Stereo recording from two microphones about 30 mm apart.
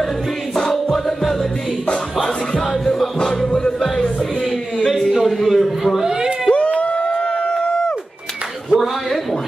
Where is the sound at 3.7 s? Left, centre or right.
Centre.